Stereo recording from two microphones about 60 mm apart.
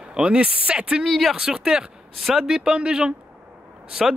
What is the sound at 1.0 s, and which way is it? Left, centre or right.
Speech, centre.